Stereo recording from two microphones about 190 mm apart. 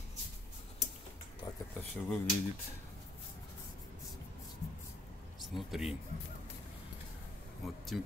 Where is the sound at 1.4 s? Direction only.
20° left (ahead or behind).